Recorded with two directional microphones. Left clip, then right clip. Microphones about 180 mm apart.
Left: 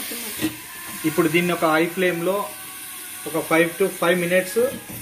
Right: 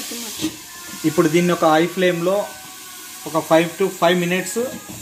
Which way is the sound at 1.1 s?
50° right (ahead or behind).